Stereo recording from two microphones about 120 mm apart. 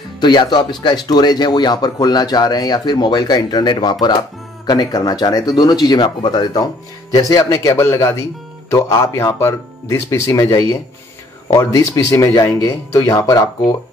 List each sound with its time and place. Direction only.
0.2 s speech: 40° left (ahead or behind)